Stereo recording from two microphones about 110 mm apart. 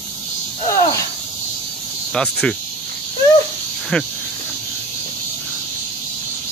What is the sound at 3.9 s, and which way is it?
Cricket, 5° left (ahead or behind).